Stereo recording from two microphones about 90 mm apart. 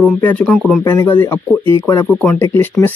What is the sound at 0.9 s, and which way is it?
Speech, 25° left (ahead or behind).